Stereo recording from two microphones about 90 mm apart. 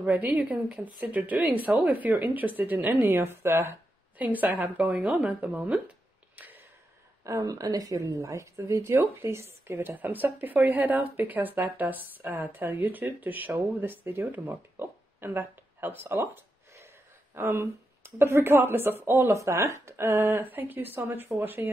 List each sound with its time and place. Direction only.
0.0 s a woman's voice: 15° right (ahead or behind)
7.2 s a woman's voice: 40° right (ahead or behind); by 16.2 s 20° right (ahead or behind)
16.3 s a sound: 30° right (ahead or behind)
17.4 s a woman's voice: 30° right (ahead or behind)